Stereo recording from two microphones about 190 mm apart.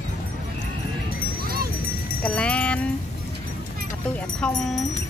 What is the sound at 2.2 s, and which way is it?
Music, 5° left (ahead or behind).